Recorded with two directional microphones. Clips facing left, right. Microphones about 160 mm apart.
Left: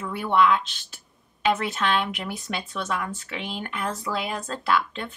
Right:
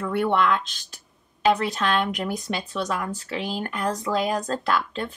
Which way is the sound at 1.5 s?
Centre (ahead or behind).